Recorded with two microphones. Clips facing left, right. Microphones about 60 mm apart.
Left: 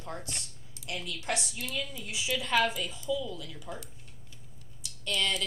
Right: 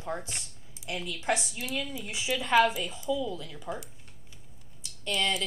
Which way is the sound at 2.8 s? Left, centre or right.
Centre.